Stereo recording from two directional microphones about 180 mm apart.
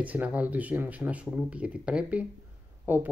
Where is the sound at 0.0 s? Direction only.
10° right (ahead or behind).